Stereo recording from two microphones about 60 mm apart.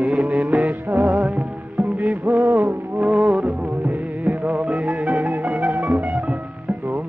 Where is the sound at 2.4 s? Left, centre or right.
Right.